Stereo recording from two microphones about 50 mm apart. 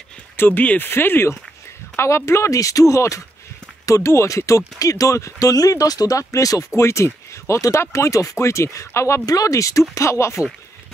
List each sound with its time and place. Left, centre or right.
0.4 s speech: left
2.0 s speech: left
3.9 s speech: left